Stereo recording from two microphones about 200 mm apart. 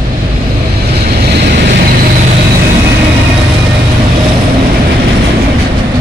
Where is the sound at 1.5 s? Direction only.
55° right (ahead or behind).